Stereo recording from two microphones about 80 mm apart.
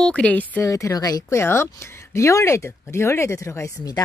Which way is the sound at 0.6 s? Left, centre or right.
Left.